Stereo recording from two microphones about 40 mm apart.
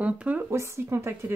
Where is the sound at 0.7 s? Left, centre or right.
Right.